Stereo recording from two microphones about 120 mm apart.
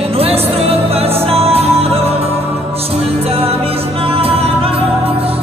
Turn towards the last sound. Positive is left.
turn(degrees=-55)  # may be behind; listen again after turning